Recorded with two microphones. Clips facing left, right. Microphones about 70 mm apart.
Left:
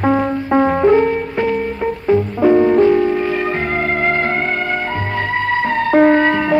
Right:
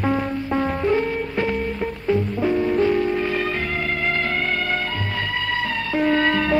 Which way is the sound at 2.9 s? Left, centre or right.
Left.